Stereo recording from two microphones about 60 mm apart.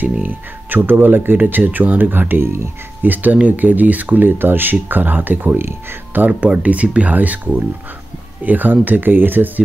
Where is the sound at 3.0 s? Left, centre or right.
Right.